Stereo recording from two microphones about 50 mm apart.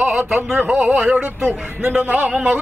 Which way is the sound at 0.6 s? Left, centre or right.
Right.